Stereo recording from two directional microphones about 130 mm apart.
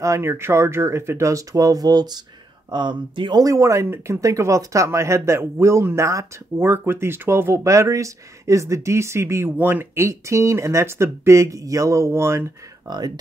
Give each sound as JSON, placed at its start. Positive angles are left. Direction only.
{"t": 0.0, "sound": "speech", "side_deg": -20}
{"t": 12.8, "sound": "speech", "side_deg": -30}